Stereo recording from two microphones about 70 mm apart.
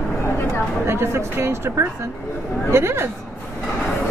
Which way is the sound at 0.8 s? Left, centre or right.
Right.